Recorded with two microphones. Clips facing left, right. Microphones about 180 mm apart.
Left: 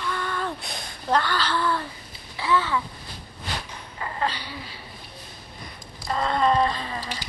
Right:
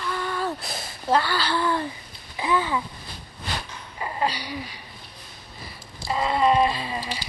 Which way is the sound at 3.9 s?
15° right (ahead or behind).